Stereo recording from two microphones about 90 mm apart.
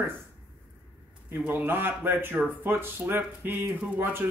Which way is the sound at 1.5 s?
25° right (ahead or behind).